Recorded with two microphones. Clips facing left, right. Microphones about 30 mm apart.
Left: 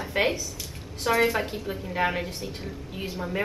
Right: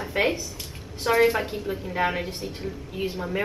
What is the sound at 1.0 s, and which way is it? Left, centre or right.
A woman's voice, centre.